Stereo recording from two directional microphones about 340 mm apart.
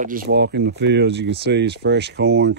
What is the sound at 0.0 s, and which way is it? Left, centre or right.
Speech, right.